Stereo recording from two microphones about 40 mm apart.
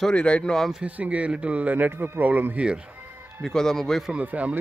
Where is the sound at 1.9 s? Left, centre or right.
Right.